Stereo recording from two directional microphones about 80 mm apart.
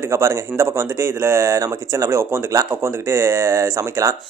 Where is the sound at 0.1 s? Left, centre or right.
Right.